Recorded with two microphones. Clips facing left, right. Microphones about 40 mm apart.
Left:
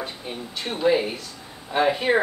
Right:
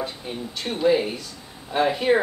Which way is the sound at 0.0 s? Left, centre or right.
Centre.